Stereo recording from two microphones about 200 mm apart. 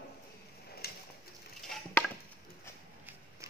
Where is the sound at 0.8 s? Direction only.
50° left (ahead or behind).